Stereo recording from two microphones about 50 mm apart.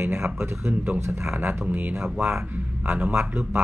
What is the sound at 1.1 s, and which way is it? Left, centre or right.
Speech, right.